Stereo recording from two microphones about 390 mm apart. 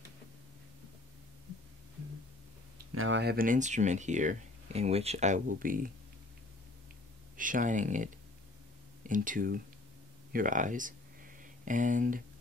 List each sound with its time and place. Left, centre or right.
2.8 s speech: right
7.3 s speech: centre